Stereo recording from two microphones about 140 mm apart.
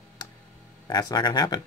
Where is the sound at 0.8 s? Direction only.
30° left (ahead or behind).